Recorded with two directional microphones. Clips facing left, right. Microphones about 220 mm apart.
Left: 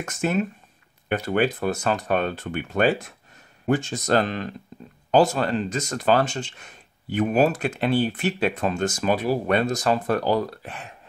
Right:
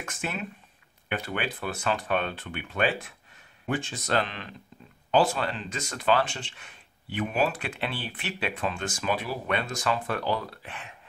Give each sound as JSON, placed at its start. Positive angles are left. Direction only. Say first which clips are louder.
{"t": 0.0, "sound": "speech", "louder": "left 10 dB", "side_deg": 45}